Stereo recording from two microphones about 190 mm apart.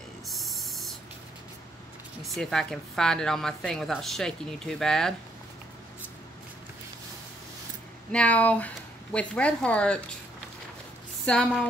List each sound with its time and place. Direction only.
0.3 s spray: centre (ahead or behind)
2.2 s speech: centre (ahead or behind)
8.1 s speech: 5° left (ahead or behind)
11.2 s speech: 5° left (ahead or behind)